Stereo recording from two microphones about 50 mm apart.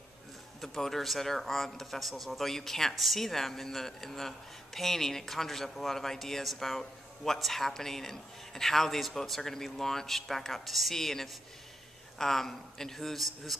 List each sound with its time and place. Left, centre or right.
0.6 s a man's voice: centre